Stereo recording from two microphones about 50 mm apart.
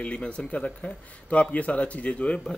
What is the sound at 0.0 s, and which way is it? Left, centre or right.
Speech, centre.